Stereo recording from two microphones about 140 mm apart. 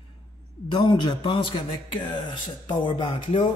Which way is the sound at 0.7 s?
35° left (ahead or behind).